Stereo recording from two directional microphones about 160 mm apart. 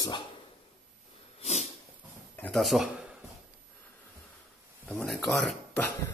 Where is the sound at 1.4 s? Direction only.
45° left (ahead or behind).